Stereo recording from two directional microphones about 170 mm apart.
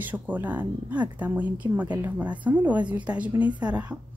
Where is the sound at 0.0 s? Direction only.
10° right (ahead or behind).